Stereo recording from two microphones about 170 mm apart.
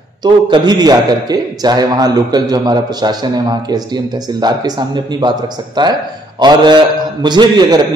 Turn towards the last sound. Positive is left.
turn(degrees=-25)  # may be behind; listen again after turning